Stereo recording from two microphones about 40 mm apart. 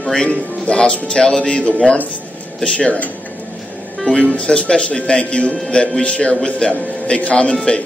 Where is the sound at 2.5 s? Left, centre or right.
Centre.